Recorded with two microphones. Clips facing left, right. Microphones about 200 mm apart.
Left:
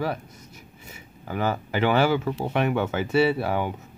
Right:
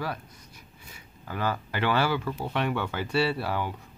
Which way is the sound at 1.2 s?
20° left (ahead or behind).